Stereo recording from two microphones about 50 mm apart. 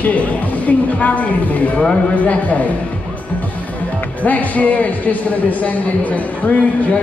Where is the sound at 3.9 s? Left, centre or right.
Left.